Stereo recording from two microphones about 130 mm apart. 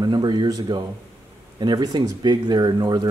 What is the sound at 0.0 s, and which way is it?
Speech, 35° right (ahead or behind).